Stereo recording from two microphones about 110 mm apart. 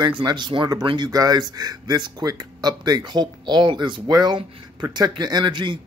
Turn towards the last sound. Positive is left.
turn(degrees=-45)  # may be behind; listen again after turning